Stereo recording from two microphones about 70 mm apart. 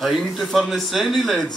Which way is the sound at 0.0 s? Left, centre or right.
Centre.